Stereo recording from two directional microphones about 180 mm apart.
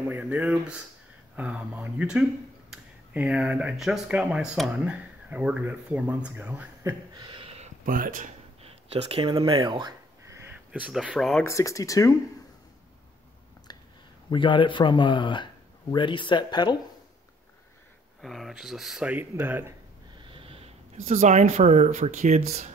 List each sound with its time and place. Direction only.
0.1 s speech: 5° right (ahead or behind)
6.8 s a sound: 20° right (ahead or behind)
7.8 s speech: 50° right (ahead or behind)
8.6 s a sound: 35° right (ahead or behind)
9.3 s speech: 30° right (ahead or behind); by 11.4 s centre (ahead or behind)
11.4 s speech: 15° left (ahead or behind)
14.3 s speech: 25° left (ahead or behind)
18.2 s speech: centre (ahead or behind)
20.2 s a sound: 30° right (ahead or behind)
21.0 s speech: 40° right (ahead or behind)